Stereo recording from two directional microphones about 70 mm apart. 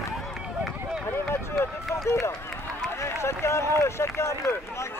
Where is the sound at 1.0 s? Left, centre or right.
Left.